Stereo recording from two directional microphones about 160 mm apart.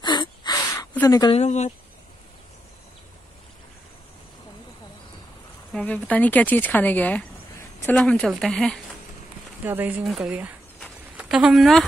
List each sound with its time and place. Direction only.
0.0 s a sound: 30° left (ahead or behind)
1.0 s a woman's voice: 25° left (ahead or behind)
1.3 s speech: 45° left (ahead or behind)
5.7 s speech: 10° left (ahead or behind)
9.7 s speech: 10° right (ahead or behind)